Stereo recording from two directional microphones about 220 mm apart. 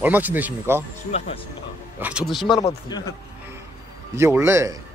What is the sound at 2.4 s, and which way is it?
Speech, 20° left (ahead or behind).